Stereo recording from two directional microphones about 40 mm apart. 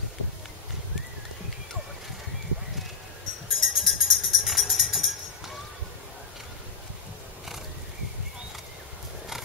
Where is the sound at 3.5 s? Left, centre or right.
Centre.